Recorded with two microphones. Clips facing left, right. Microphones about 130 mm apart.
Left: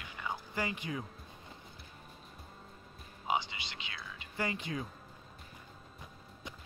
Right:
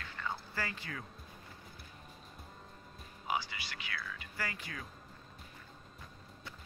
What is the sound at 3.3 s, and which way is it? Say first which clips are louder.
Speech: left 3 dB; 20° left (ahead or behind).